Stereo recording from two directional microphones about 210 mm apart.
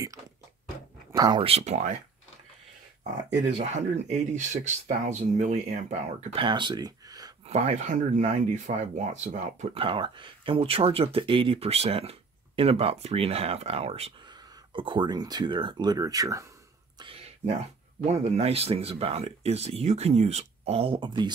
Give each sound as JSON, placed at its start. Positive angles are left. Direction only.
{"t": 1.1, "sound": "speech", "side_deg": -20}
{"t": 3.3, "sound": "speech", "side_deg": -30}
{"t": 7.4, "sound": "speech", "side_deg": -30}
{"t": 17.0, "sound": "a sound", "side_deg": -30}
{"t": 18.0, "sound": "speech", "side_deg": -30}